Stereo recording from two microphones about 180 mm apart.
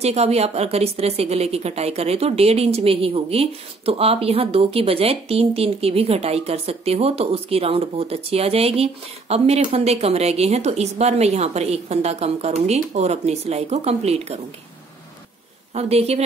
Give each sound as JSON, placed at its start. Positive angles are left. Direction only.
{"t": 0.0, "sound": "a woman's voice", "side_deg": -35}
{"t": 15.7, "sound": "a woman's voice", "side_deg": -35}